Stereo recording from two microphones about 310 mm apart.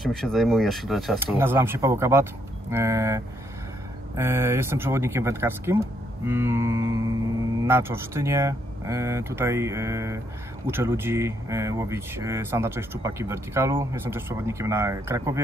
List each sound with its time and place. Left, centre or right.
0.0 s speech: centre
4.2 s speech: centre